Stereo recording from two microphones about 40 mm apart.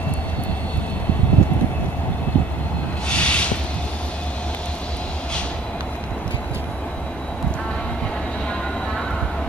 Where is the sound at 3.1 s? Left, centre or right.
Left.